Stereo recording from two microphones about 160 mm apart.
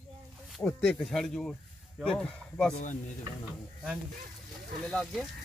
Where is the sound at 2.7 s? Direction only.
50° left (ahead or behind).